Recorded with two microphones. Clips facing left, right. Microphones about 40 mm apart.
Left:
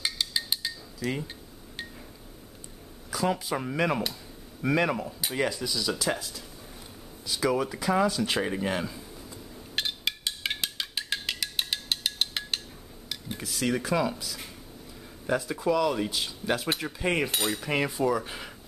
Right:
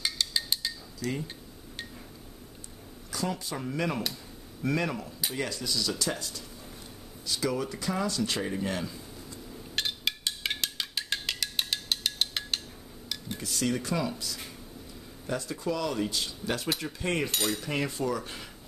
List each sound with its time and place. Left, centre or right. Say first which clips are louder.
0.0 s cutlery: left 1 dB; centre
3.1 s speech: left 5 dB; centre
8.5 s a sound: left 3 dB; centre
13.1 s dishes: even; centre
15.2 s speech: left 5 dB; centre